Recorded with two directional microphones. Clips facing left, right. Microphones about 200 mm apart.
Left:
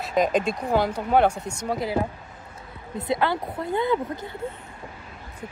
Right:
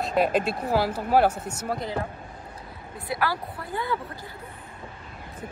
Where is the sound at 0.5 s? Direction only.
5° right (ahead or behind).